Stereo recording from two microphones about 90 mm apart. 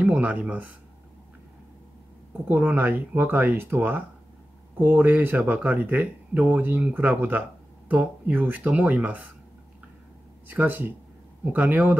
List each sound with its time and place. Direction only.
0.0 s speech: 15° right (ahead or behind)
2.4 s speech: 20° right (ahead or behind)
10.5 s speech: 20° right (ahead or behind)